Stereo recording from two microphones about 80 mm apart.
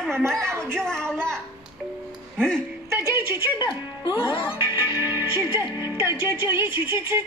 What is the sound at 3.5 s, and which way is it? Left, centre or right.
Speech, left.